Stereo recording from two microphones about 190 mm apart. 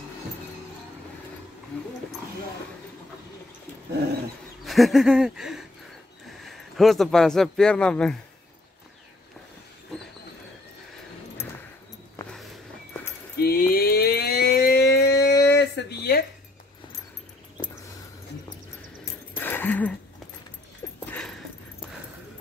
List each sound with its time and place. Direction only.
1.7 s wild animals: 5° left (ahead or behind)
4.6 s a sound: centre (ahead or behind)
6.4 s a man's voice: centre (ahead or behind)
13.4 s a sound: 55° left (ahead or behind)
19.3 s dog: 10° left (ahead or behind)
21.0 s dog: 5° left (ahead or behind)